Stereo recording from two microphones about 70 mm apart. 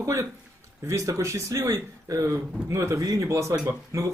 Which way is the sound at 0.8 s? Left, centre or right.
Right.